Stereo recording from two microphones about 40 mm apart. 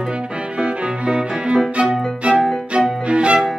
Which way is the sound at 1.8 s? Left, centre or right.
Right.